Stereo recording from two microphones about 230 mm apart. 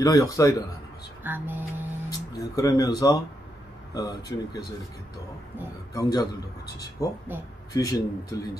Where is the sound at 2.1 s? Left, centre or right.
Centre.